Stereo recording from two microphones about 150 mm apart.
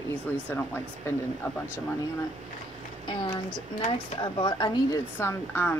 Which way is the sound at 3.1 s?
30° left (ahead or behind).